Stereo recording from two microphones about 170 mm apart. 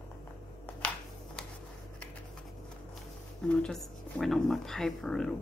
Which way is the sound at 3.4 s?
5° left (ahead or behind).